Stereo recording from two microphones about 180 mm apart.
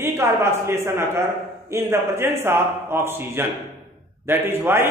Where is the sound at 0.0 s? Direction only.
15° right (ahead or behind).